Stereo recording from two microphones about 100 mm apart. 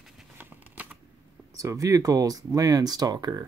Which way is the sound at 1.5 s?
35° right (ahead or behind).